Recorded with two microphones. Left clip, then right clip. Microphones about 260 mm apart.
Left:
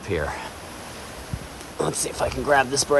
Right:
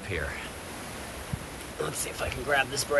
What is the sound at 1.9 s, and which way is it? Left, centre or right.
Speech, centre.